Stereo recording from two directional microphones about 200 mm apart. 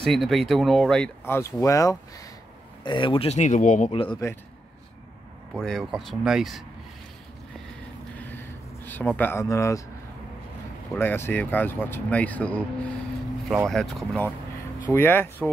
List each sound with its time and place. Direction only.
0.0 s speech: centre (ahead or behind); by 4.2 s 25° left (ahead or behind)
5.5 s speech: centre (ahead or behind)
8.2 s a sound: 10° left (ahead or behind)
11.0 s speech: 10° left (ahead or behind)